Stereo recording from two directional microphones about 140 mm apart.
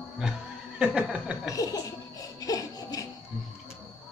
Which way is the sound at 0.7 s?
5° right (ahead or behind).